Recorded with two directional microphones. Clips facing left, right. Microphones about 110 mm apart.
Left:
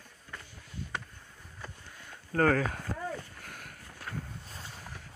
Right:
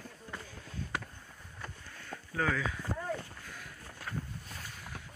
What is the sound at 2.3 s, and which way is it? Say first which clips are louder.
Speech: left 7 dB; 55° left (ahead or behind).